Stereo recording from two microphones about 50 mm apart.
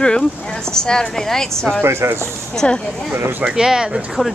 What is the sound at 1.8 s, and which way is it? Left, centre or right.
Speech, right.